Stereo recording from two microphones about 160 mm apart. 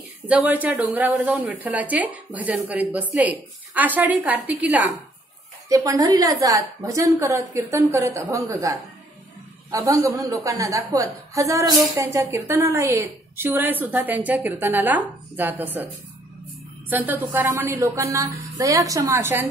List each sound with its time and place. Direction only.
0.3 s a woman's voice: 10° right (ahead or behind)
5.7 s a woman's voice: 20° right (ahead or behind)
16.9 s a woman's voice: 10° right (ahead or behind)